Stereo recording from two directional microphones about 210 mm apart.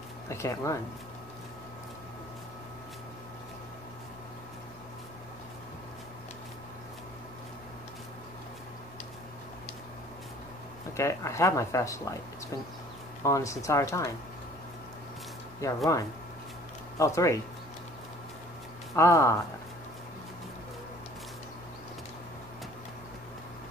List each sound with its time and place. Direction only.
0.3 s speech: 15° left (ahead or behind)
11.0 s speech: 15° left (ahead or behind)
13.2 s speech: 15° left (ahead or behind)
15.6 s speech: 15° left (ahead or behind)
18.9 s speech: 15° left (ahead or behind)